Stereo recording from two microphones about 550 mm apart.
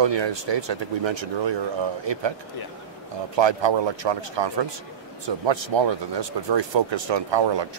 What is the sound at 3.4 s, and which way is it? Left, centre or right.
Speech, right.